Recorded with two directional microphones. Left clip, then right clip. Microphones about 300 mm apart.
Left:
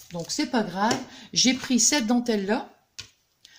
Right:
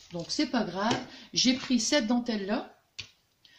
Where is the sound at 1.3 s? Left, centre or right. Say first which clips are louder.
Left 4 dB; left.